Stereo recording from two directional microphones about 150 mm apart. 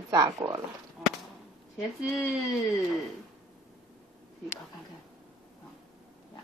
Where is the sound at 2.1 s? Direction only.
5° right (ahead or behind).